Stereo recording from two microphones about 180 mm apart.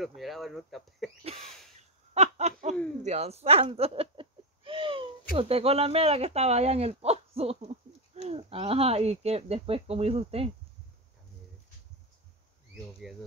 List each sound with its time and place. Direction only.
0.0 s speech: centre (ahead or behind)
1.4 s a sound: centre (ahead or behind)
1.8 s a sound: 35° right (ahead or behind)
3.0 s chuckle: 40° right (ahead or behind)
5.3 s speech: 35° right (ahead or behind)
13.0 s speech: centre (ahead or behind)